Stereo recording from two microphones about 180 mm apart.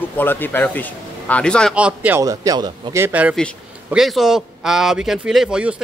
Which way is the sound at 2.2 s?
20° right (ahead or behind).